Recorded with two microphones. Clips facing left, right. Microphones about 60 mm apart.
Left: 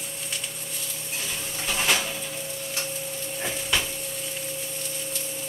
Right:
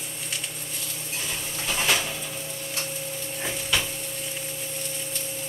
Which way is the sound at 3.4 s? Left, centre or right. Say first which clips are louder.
Even; centre.